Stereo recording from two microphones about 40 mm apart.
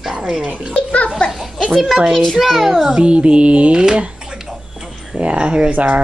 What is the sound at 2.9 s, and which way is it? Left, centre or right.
Speech, right.